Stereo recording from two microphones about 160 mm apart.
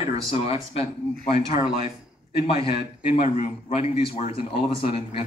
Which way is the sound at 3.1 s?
40° left (ahead or behind).